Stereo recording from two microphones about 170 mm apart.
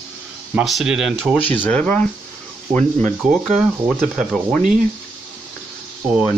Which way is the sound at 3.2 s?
Centre (ahead or behind).